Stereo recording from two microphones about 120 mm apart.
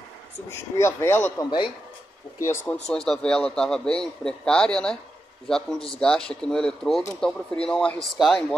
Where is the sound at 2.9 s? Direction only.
5° left (ahead or behind).